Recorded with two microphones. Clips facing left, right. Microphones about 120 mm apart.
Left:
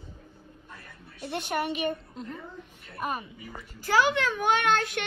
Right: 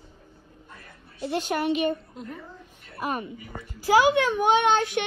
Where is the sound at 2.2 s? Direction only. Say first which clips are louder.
Even; 5° right (ahead or behind).